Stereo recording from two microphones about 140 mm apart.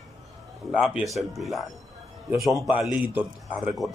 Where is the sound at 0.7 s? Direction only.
5° right (ahead or behind).